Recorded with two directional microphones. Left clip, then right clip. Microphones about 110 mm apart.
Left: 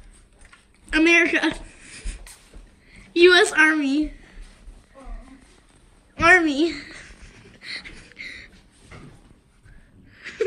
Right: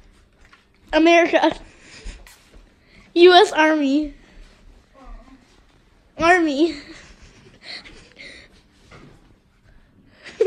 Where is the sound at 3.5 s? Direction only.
25° right (ahead or behind).